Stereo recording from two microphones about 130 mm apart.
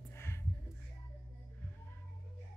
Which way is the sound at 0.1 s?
20° left (ahead or behind).